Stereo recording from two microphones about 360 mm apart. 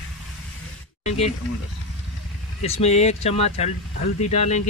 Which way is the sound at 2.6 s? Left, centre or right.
Centre.